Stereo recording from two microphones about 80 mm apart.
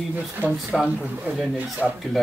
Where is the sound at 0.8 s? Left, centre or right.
Centre.